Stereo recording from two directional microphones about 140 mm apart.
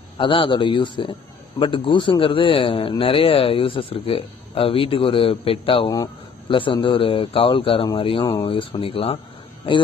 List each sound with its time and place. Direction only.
0.2 s a man's voice: 35° left (ahead or behind)